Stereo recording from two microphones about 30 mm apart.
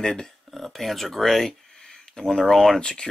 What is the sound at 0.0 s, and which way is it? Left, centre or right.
Speech, centre.